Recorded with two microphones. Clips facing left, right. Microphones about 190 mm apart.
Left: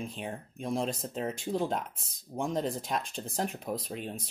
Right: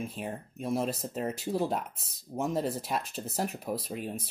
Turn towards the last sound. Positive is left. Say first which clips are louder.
# right 2 dB
turn(degrees=-5)  # may be behind; listen again after turning